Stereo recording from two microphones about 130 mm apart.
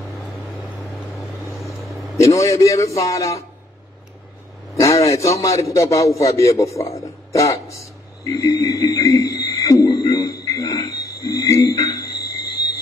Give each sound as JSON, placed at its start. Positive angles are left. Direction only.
{"t": 1.5, "sound": "vehicle", "side_deg": 0}
{"t": 2.2, "sound": "a man's voice", "side_deg": 25}
{"t": 4.7, "sound": "a man's voice", "side_deg": 25}
{"t": 7.0, "sound": "a sound", "side_deg": 25}